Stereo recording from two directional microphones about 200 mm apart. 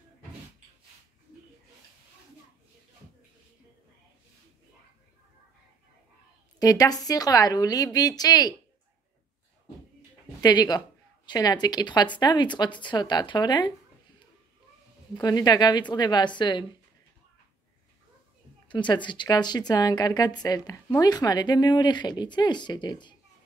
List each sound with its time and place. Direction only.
6.6 s speech: 20° left (ahead or behind)
10.4 s speech: 20° left (ahead or behind)
15.1 s speech: 20° left (ahead or behind)
18.7 s speech: 25° left (ahead or behind)